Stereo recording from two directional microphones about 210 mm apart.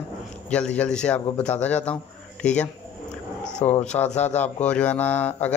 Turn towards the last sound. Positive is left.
turn(degrees=10)  # may be behind; listen again after turning